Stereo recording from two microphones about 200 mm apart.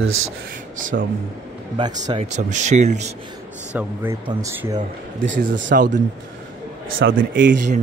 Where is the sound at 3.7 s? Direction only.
15° right (ahead or behind).